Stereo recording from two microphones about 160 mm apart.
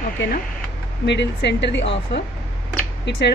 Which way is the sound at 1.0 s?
90° left.